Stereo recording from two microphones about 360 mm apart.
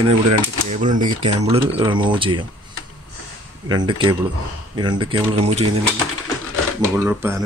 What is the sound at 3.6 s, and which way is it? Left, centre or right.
Speech, centre.